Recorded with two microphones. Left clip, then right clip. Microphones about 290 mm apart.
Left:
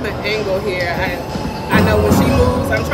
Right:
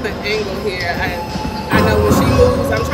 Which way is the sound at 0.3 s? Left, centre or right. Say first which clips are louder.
Left 2 dB; centre.